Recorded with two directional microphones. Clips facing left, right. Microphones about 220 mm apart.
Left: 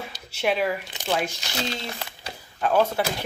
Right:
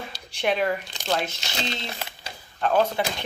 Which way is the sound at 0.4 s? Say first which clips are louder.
Even; 5° left (ahead or behind).